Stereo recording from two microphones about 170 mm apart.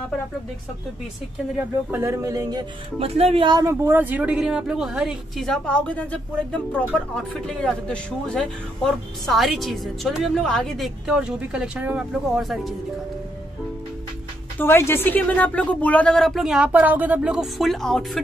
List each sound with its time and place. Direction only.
1.9 s speech: 15° right (ahead or behind)
3.0 s speech: 35° right (ahead or behind)
3.5 s a man's voice: 15° right (ahead or behind); by 12.7 s centre (ahead or behind)
14.6 s a man's voice: 15° left (ahead or behind)